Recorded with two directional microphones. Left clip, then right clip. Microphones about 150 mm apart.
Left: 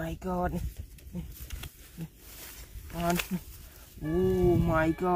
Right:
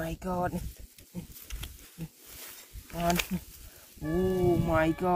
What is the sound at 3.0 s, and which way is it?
Speech, 55° right (ahead or behind).